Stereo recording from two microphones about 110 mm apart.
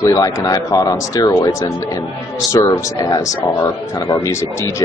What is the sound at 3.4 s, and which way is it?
Speech, 15° left (ahead or behind).